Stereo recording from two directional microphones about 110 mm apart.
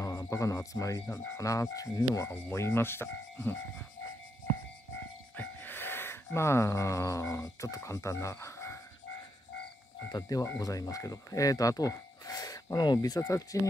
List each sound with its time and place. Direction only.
0.0 s speech: 30° left (ahead or behind)
5.4 s speech: 20° left (ahead or behind)
10.1 s speech: 35° left (ahead or behind)